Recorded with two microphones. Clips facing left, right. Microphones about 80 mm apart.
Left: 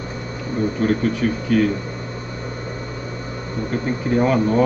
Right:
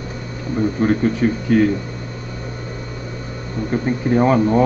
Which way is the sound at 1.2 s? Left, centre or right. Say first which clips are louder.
Right 4 dB; right.